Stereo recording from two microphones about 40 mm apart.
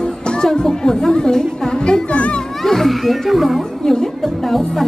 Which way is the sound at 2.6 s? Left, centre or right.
Centre.